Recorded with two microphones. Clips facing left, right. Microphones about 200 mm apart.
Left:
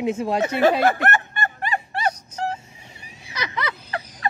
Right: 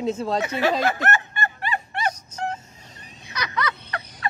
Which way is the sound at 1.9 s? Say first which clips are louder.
Left 2 dB; 35° left (ahead or behind).